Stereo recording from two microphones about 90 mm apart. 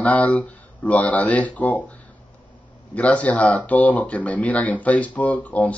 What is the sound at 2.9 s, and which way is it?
Speech, 15° left (ahead or behind).